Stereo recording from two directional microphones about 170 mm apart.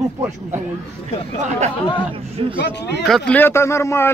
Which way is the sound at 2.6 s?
85° left.